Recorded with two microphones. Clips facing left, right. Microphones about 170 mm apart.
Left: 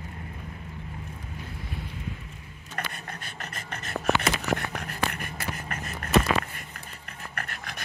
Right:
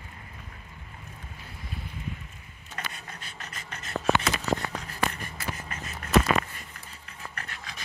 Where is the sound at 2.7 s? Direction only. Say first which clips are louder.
Left 4 dB; 60° left (ahead or behind).